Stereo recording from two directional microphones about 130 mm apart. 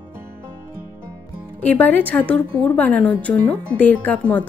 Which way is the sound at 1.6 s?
10° left (ahead or behind).